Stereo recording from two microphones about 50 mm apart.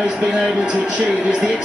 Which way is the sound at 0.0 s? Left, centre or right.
Right.